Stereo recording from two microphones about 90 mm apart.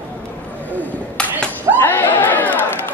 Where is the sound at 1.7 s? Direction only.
20° left (ahead or behind).